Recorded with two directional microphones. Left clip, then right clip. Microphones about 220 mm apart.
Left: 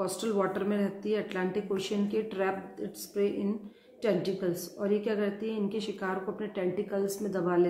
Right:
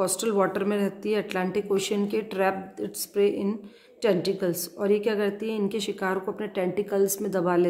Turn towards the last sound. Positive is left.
turn(degrees=-50)  # may be behind; listen again after turning